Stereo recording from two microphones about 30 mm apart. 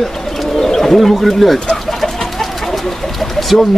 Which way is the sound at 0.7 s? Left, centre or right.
Centre.